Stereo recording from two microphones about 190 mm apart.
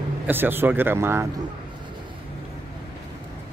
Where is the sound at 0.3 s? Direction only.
10° right (ahead or behind).